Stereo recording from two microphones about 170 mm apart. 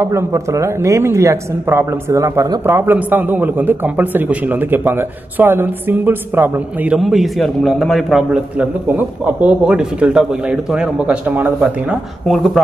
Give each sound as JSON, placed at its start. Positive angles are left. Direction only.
{"t": 0.0, "sound": "a man's voice", "side_deg": -15}